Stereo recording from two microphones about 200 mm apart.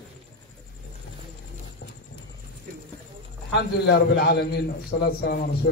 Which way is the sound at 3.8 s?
50° left (ahead or behind).